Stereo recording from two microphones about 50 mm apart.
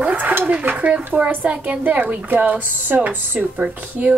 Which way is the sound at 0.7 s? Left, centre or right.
Right.